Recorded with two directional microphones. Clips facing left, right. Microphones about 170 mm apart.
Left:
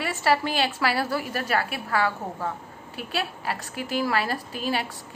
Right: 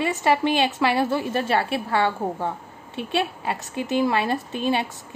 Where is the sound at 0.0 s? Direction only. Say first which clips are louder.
Right 3 dB; 20° right (ahead or behind).